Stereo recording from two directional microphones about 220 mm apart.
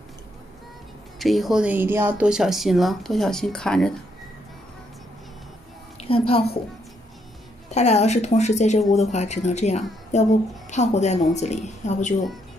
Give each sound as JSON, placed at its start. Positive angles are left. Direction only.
{"t": 1.2, "sound": "speech", "side_deg": 0}
{"t": 5.9, "sound": "a woman's voice", "side_deg": 25}
{"t": 7.7, "sound": "a woman's voice", "side_deg": 30}